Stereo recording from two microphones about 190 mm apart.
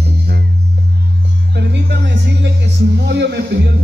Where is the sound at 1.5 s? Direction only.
65° right (ahead or behind).